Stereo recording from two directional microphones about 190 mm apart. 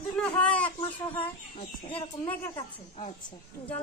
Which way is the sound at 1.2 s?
30° left (ahead or behind).